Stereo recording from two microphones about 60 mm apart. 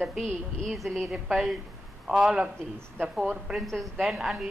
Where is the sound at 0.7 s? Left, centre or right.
Centre.